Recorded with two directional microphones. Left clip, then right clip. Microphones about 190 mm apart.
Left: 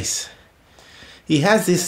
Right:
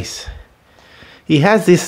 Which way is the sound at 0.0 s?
35° right (ahead or behind).